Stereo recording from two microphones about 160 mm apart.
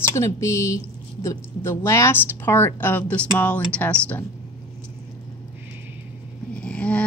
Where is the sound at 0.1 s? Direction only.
20° left (ahead or behind).